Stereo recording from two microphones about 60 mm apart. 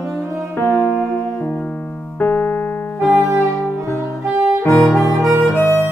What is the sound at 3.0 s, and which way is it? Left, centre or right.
Music, left.